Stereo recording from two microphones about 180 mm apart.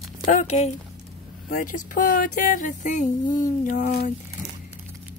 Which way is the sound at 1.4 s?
50° left (ahead or behind).